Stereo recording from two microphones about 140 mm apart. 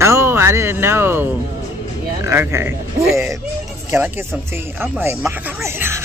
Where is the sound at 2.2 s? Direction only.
15° right (ahead or behind).